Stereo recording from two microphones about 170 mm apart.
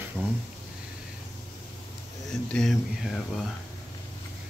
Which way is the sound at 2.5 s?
5° left (ahead or behind).